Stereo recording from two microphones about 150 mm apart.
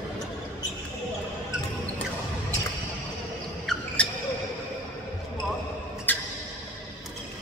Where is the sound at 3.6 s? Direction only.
5° left (ahead or behind).